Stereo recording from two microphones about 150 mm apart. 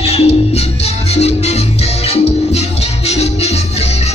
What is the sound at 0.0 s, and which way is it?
Music, 40° left (ahead or behind).